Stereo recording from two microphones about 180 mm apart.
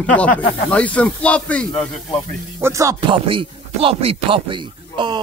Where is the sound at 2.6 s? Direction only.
15° right (ahead or behind).